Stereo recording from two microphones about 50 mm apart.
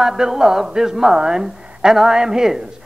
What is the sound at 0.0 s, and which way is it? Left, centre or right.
A woman's voice, centre.